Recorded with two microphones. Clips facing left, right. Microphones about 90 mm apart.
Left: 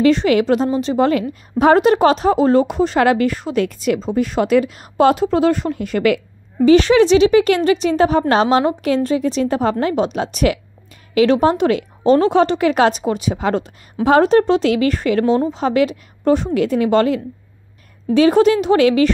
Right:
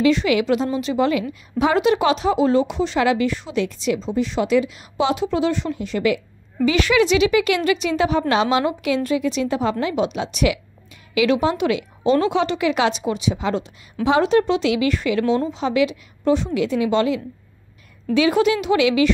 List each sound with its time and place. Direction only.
0.0 s a woman's voice: 40° left (ahead or behind); by 6.2 s 60° left (ahead or behind)
6.6 s a woman's voice: 35° left (ahead or behind)